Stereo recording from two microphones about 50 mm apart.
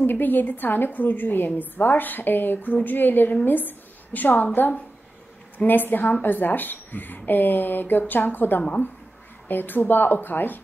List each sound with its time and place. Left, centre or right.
0.0 s a woman's voice: left